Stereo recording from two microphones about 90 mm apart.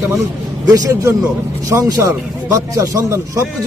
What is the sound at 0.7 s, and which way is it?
A man's voice, 40° right (ahead or behind).